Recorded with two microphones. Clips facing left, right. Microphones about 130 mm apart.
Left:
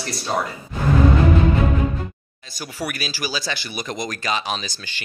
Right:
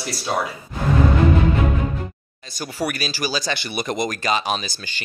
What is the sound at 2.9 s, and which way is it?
Speech, 5° left (ahead or behind).